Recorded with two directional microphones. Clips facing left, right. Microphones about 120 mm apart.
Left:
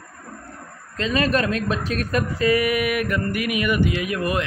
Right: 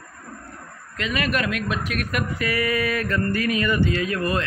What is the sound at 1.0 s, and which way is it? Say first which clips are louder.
Speech: left 4 dB; 30° left (ahead or behind).